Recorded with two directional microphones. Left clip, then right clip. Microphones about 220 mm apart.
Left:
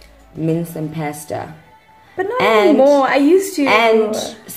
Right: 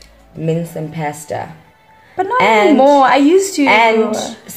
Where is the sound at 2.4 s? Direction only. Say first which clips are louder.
Right 1 dB; 20° left (ahead or behind).